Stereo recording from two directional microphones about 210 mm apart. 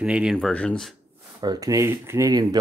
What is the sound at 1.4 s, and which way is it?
Speech, 15° right (ahead or behind).